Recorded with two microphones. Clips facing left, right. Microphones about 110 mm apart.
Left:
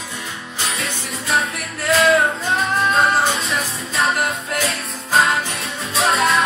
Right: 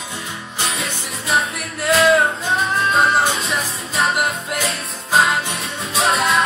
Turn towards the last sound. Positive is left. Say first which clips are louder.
# even
turn(degrees=0)  # may be behind; listen again after turning